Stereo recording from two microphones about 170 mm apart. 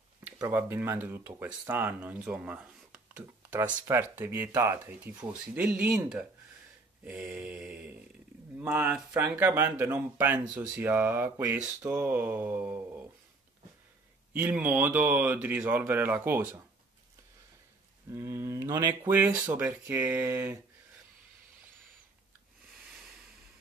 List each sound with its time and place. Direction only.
0.4 s speech: 15° right (ahead or behind)
3.8 s speech: 15° right (ahead or behind)
7.1 s mantra: 5° right (ahead or behind)
8.5 s speech: 10° right (ahead or behind)
14.3 s speech: 10° right (ahead or behind)
18.1 s speech: 15° right (ahead or behind)